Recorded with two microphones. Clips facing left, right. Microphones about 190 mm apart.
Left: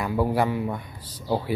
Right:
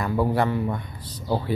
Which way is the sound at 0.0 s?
10° left (ahead or behind).